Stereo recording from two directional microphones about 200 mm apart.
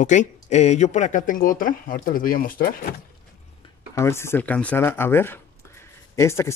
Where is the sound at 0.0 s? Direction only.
35° left (ahead or behind).